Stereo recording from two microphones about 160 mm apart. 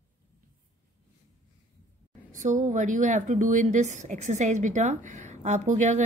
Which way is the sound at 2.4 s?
50° right (ahead or behind).